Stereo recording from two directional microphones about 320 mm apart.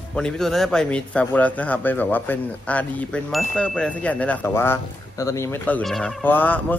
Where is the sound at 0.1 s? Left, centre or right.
Centre.